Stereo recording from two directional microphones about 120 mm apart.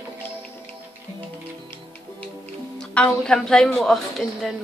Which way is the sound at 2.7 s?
10° left (ahead or behind).